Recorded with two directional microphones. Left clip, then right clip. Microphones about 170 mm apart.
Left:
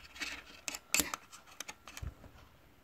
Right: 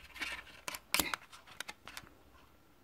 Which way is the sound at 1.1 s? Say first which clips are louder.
Right 2 dB; 25° right (ahead or behind).